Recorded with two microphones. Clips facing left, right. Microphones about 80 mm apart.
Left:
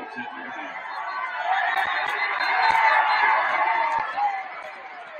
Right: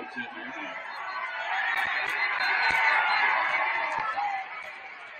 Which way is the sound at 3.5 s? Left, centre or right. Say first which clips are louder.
Left 7 dB; left.